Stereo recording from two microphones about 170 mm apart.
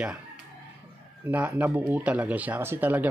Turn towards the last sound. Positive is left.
turn(degrees=-10)  # may be behind; listen again after turning